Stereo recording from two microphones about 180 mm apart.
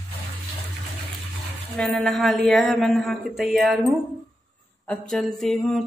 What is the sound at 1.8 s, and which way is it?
Speech, 5° left (ahead or behind).